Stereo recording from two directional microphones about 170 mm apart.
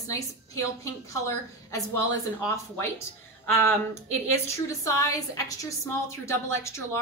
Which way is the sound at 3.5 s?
15° left (ahead or behind).